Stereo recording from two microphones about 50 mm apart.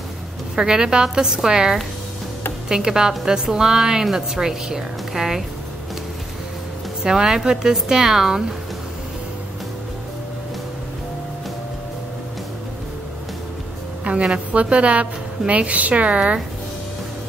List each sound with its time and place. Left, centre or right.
0.6 s a woman's voice: centre
7.0 s a woman's voice: centre
14.2 s a woman's voice: right